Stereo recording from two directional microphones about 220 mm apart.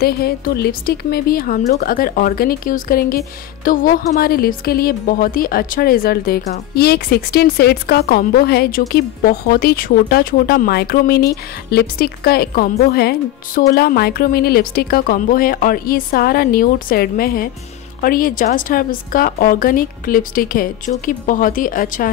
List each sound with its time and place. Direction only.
0.0 s speech: 45° left (ahead or behind)